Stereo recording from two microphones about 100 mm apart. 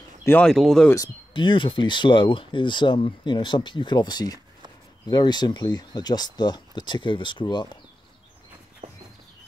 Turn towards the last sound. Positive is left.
turn(degrees=50)  # may be behind; listen again after turning